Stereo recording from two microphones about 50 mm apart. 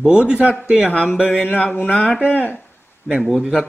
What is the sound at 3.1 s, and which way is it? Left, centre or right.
Speech, centre.